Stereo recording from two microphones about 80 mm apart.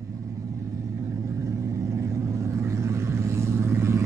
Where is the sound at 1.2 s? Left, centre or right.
Right.